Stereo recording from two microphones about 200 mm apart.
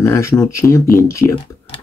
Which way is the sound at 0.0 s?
15° left (ahead or behind).